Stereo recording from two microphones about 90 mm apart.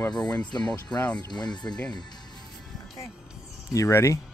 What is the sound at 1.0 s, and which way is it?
Speech, 15° left (ahead or behind).